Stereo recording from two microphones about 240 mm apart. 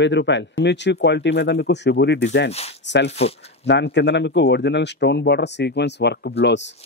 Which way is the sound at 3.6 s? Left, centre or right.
Left.